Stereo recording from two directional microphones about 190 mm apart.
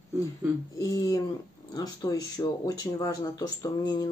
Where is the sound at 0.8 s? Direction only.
20° left (ahead or behind).